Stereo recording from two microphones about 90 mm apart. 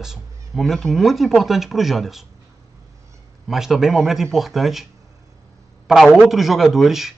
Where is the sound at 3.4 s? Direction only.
5° right (ahead or behind).